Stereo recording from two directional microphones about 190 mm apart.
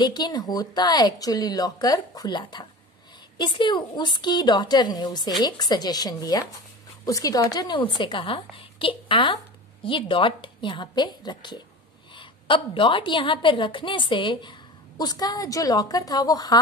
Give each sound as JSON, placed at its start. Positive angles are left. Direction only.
{"t": 0.0, "sound": "a woman's voice", "side_deg": 20}